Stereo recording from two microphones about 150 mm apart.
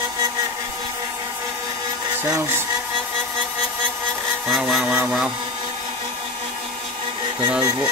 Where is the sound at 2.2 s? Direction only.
15° right (ahead or behind).